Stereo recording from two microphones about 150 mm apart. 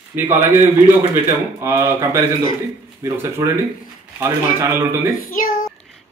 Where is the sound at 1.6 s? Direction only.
20° right (ahead or behind).